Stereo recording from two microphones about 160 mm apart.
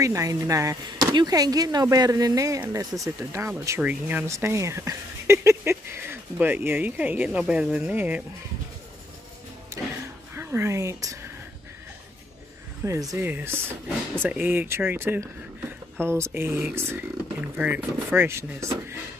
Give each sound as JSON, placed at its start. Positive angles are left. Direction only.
{"t": 0.0, "sound": "speech", "side_deg": -20}
{"t": 9.8, "sound": "music", "side_deg": -20}
{"t": 10.3, "sound": "speech", "side_deg": -15}
{"t": 12.8, "sound": "speech", "side_deg": -20}